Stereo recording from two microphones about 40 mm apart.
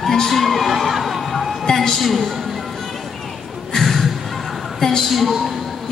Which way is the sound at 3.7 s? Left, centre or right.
Centre.